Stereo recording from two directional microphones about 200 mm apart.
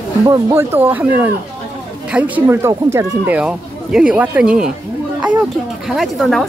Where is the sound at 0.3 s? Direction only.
15° right (ahead or behind).